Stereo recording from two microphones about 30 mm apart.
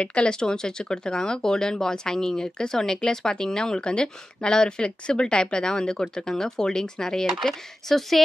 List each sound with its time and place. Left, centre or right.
0.0 s speech: left
0.3 s speech: left
7.4 s speech: centre